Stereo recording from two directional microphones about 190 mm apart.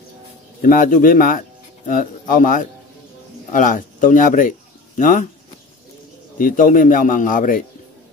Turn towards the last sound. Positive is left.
turn(degrees=45)  # may be behind; listen again after turning